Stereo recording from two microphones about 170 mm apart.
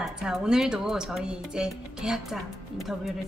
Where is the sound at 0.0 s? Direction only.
5° right (ahead or behind).